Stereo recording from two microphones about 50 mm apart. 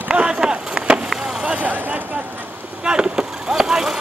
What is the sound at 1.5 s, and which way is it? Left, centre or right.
Vehicle, right.